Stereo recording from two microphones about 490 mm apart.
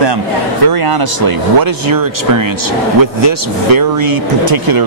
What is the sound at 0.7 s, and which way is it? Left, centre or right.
Speech, right.